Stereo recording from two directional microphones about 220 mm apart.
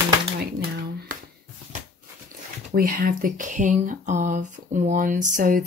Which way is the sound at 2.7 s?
40° right (ahead or behind).